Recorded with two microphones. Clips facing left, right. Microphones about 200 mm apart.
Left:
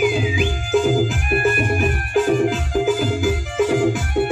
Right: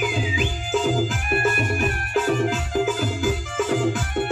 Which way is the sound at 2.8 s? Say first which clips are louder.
Left 5 dB; 10° left (ahead or behind).